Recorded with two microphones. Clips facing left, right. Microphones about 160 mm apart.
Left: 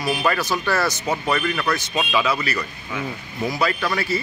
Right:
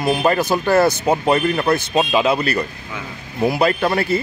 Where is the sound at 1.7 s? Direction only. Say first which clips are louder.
Right 5 dB; 45° right (ahead or behind).